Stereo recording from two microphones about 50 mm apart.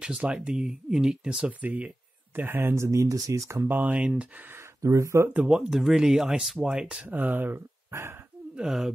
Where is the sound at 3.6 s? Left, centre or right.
Right.